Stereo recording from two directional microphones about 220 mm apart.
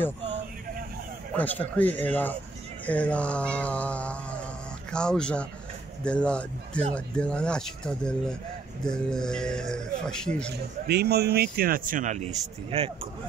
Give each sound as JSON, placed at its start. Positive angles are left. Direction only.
{"t": 1.3, "sound": "a man's voice", "side_deg": 5}
{"t": 10.5, "sound": "speech", "side_deg": -45}